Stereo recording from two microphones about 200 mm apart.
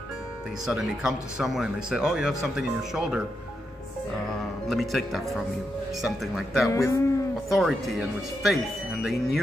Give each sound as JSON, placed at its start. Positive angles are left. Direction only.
{"t": 0.7, "sound": "speech", "side_deg": 0}
{"t": 4.6, "sound": "speech", "side_deg": 0}
{"t": 6.7, "sound": "speech", "side_deg": 15}
{"t": 7.5, "sound": "speech", "side_deg": 0}